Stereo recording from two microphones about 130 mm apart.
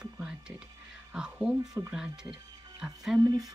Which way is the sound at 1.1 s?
5° right (ahead or behind).